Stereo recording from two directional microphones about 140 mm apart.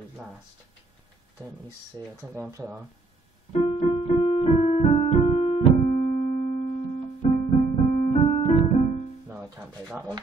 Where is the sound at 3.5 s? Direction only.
45° left (ahead or behind).